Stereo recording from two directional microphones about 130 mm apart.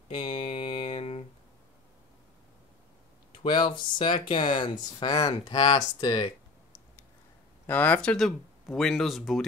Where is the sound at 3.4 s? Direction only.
40° left (ahead or behind).